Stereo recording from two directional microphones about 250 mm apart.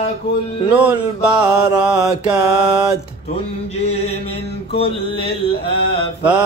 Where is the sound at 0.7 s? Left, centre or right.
Centre.